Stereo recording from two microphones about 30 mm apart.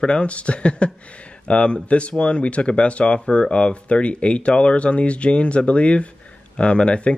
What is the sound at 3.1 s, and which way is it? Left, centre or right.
Speech, left.